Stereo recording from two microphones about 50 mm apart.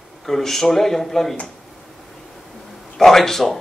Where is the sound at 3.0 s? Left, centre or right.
Centre.